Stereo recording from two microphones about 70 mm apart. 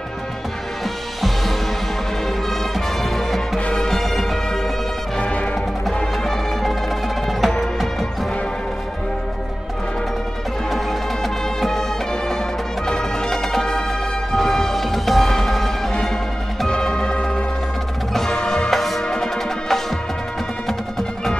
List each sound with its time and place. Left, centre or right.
3.0 s music: centre
5.2 s music: centre
5.9 s music: centre
10.7 s music: centre
12.8 s music: centre